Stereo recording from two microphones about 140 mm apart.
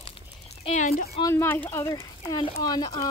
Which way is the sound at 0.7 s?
60° left (ahead or behind).